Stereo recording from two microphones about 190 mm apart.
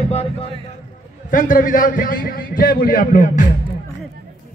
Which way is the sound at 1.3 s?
45° left (ahead or behind).